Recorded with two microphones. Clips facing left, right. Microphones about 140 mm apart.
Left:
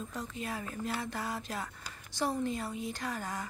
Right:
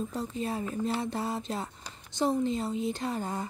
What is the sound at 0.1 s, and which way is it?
Speech, 30° right (ahead or behind).